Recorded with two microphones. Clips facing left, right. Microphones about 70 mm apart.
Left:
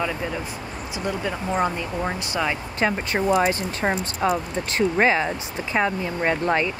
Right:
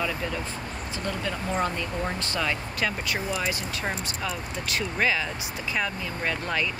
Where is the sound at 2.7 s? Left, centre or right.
Left.